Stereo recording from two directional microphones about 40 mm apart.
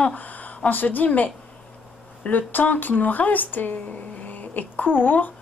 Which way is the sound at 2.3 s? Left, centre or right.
Left.